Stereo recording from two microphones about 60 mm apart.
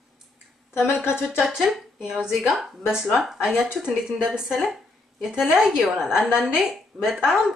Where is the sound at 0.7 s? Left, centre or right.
Left.